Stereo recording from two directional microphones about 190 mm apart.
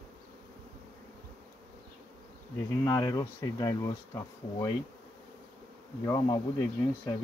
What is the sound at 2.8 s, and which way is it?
Speech, 15° left (ahead or behind).